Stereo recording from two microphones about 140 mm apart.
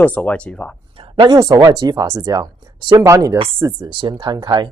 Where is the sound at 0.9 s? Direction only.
40° right (ahead or behind).